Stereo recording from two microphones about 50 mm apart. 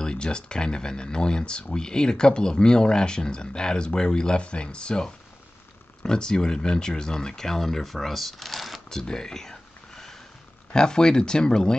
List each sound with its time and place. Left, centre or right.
0.0 s speech: centre
8.8 s a sound: centre
10.7 s speech: centre